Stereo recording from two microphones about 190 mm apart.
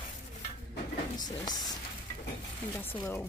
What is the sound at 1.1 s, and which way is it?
Speech, 20° left (ahead or behind).